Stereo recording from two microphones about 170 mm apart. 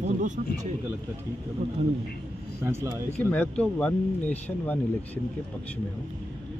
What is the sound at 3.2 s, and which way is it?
Speech, 10° left (ahead or behind).